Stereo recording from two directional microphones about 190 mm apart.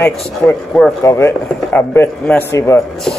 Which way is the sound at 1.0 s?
15° left (ahead or behind).